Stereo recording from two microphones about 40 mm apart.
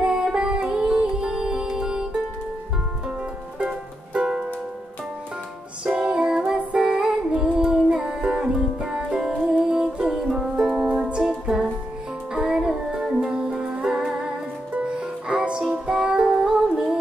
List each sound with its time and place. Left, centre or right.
0.0 s music: centre
3.5 s music: right
5.9 s music: centre
10.8 s music: right